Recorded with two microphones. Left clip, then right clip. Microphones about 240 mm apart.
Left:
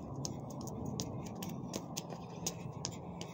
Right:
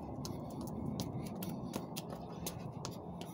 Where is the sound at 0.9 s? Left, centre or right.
Centre.